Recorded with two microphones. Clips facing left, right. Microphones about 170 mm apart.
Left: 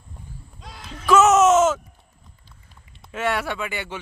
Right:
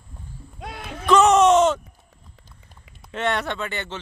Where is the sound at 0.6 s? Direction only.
60° right (ahead or behind).